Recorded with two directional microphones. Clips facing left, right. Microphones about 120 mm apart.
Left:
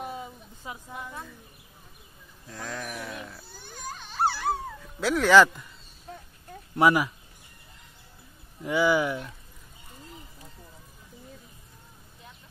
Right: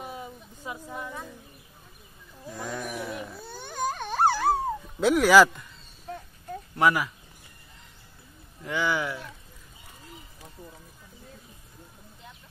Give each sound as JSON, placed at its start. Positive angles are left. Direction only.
{"t": 0.0, "sound": "a sound", "side_deg": -5}
{"t": 2.5, "sound": "sheep", "side_deg": -10}
{"t": 3.4, "sound": "baby cry", "side_deg": -70}
{"t": 5.0, "sound": "speech", "side_deg": -10}
{"t": 6.8, "sound": "speech", "side_deg": 15}
{"t": 8.6, "sound": "speech", "side_deg": 15}